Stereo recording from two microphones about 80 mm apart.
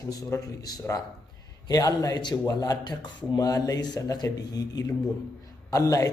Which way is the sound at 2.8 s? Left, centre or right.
Left.